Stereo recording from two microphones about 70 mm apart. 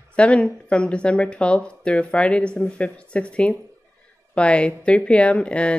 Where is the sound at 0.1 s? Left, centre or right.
Centre.